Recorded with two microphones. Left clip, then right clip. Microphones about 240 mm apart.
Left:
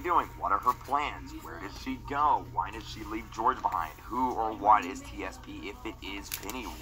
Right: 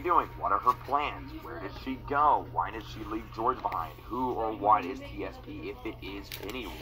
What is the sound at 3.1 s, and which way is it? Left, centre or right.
Speech, left.